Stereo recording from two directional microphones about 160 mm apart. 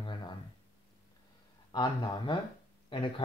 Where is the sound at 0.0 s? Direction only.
30° left (ahead or behind).